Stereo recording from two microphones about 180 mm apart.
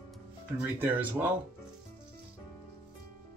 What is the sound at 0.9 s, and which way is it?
Speech, 10° right (ahead or behind).